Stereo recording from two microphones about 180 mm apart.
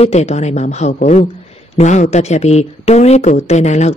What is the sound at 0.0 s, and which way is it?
Speech, 40° left (ahead or behind).